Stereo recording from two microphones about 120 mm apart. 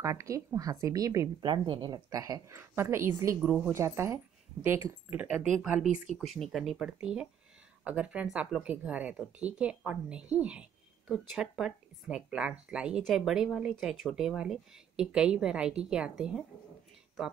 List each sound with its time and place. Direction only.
0.0 s a woman's voice: 25° right (ahead or behind)
1.4 s a woman's voice: 40° right (ahead or behind); by 3.3 s 20° right (ahead or behind)
3.4 s speech: 10° right (ahead or behind)
3.7 s a woman's voice: 20° right (ahead or behind); by 16.4 s 5° right (ahead or behind)